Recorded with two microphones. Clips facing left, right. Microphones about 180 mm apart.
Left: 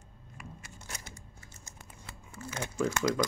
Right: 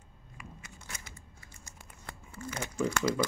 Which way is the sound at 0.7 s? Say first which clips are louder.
Left 2 dB; 40° left (ahead or behind).